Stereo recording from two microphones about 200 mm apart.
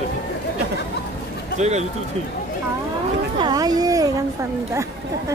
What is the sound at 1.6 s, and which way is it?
Speech, 35° right (ahead or behind).